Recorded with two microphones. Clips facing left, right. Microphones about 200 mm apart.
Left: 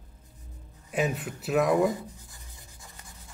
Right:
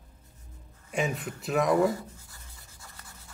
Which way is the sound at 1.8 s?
15° left (ahead or behind).